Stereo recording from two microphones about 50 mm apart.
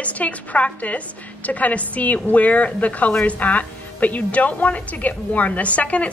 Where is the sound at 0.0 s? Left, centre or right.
Left.